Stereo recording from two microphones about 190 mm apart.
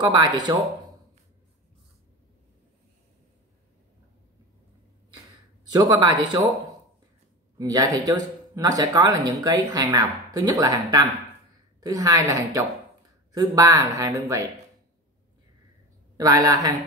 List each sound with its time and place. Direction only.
0.0 s speech: 20° right (ahead or behind)
5.7 s speech: 20° right (ahead or behind)
7.5 s speech: 20° right (ahead or behind)
16.2 s speech: 20° right (ahead or behind)